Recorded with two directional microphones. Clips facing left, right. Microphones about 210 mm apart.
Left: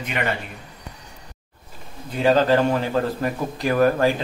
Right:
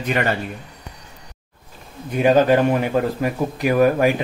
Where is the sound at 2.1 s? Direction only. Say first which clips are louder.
Right 3 dB; 15° right (ahead or behind).